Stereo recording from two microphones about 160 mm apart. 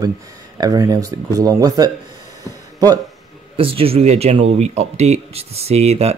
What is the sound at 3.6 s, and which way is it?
Speech, 35° right (ahead or behind).